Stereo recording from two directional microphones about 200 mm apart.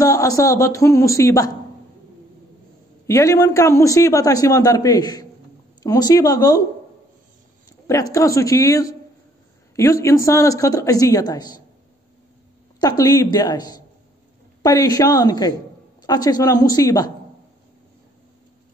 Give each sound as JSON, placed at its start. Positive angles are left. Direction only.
{"t": 0.0, "sound": "a man's voice", "side_deg": 15}
{"t": 3.1, "sound": "a man's voice", "side_deg": 15}
{"t": 7.8, "sound": "a man's voice", "side_deg": 15}
{"t": 12.8, "sound": "a woman's voice", "side_deg": 20}